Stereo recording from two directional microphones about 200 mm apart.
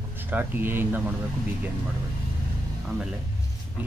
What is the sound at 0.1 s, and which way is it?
Speech, 10° right (ahead or behind).